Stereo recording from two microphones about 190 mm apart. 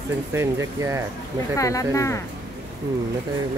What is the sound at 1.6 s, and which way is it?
Speech, 15° left (ahead or behind).